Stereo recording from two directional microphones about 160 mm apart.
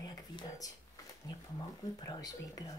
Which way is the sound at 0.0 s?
25° left (ahead or behind).